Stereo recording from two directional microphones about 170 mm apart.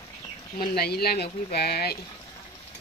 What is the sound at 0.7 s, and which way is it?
Speech, 70° left (ahead or behind).